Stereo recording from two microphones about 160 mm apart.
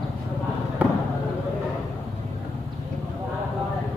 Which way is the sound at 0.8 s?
10° right (ahead or behind).